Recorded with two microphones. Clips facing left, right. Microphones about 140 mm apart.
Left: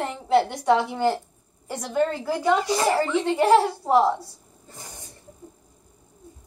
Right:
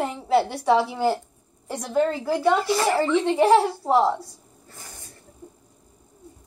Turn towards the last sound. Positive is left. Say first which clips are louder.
# left 2 dB
turn(degrees=20)  # may be behind; listen again after turning